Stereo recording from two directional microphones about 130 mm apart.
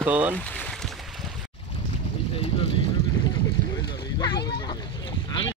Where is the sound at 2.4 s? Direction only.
45° left (ahead or behind).